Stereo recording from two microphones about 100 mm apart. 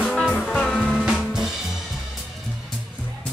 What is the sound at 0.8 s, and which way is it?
Music, 5° right (ahead or behind).